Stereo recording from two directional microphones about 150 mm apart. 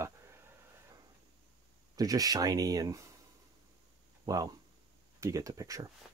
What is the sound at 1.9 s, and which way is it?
Speech, 25° right (ahead or behind).